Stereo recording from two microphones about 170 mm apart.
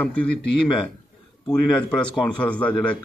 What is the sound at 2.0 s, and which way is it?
Speech, 5° left (ahead or behind).